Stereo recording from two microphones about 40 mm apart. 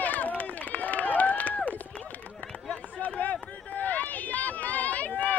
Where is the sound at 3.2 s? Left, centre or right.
Left.